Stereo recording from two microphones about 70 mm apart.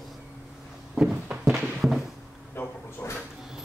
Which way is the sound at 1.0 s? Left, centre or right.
Centre.